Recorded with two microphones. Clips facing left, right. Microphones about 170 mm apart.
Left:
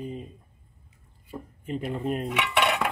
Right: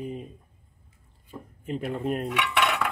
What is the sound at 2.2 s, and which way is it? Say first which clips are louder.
Cutlery: left 1 dB; 20° left (ahead or behind).